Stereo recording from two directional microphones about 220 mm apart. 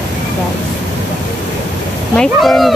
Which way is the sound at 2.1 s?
Centre (ahead or behind).